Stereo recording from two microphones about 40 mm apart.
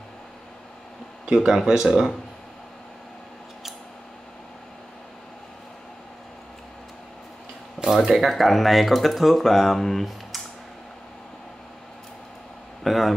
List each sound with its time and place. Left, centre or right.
1.2 s speech: centre
7.8 s speech: centre
8.2 s speech: centre
12.8 s a sound: centre